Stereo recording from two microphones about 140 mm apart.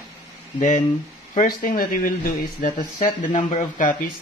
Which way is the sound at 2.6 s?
75° left (ahead or behind).